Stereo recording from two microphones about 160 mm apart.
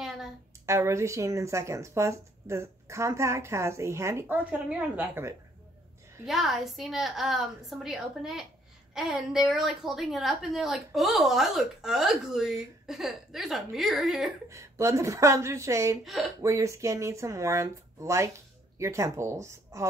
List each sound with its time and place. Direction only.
0.7 s speech: 15° right (ahead or behind)
6.2 s a woman's voice: centre (ahead or behind)
14.5 s speech: 20° right (ahead or behind)
16.0 s a woman's voice: centre (ahead or behind)
16.3 s speech: 20° right (ahead or behind)